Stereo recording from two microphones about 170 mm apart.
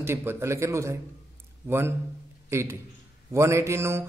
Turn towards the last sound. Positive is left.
turn(degrees=-15)  # may be behind; listen again after turning